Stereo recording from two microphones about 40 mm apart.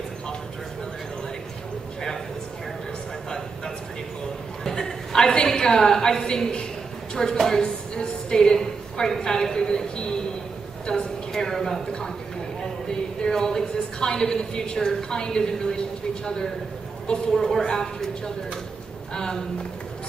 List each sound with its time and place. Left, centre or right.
4.6 s a woman's voice: centre
13.2 s a woman's voice: centre
17.3 s a woman's voice: centre